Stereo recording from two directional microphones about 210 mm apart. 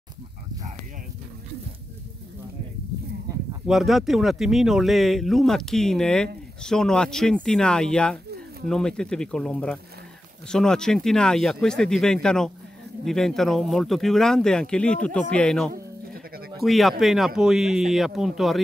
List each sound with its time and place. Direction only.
3.6 s speech: centre (ahead or behind)
15.7 s sheep: 45° right (ahead or behind)
16.6 s speech: centre (ahead or behind)